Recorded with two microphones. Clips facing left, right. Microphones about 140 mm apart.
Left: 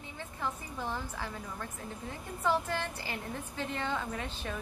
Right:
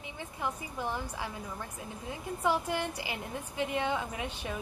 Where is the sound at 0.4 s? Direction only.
15° right (ahead or behind).